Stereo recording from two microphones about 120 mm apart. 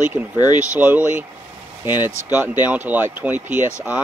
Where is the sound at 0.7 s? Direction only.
10° right (ahead or behind).